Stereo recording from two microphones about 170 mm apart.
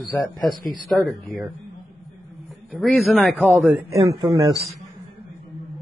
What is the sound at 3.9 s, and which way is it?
Speech, 20° right (ahead or behind).